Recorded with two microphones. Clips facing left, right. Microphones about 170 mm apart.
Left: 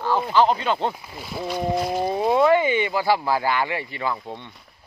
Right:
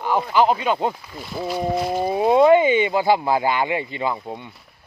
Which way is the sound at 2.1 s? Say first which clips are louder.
Right 4 dB; 20° right (ahead or behind).